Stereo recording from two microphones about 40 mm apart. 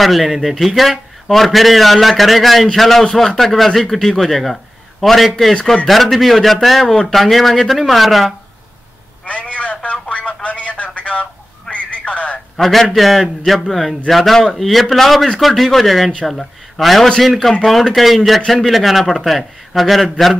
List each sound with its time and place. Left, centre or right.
0.0 s a man's voice: centre
9.2 s telephone: left
10.0 s a sound: left
12.5 s a man's voice: centre